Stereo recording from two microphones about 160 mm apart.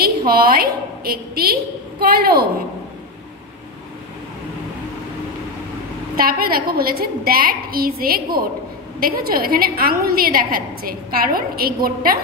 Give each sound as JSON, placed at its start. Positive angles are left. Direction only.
{"t": 0.3, "sound": "a woman's voice", "side_deg": -70}
{"t": 6.1, "sound": "a woman's voice", "side_deg": -65}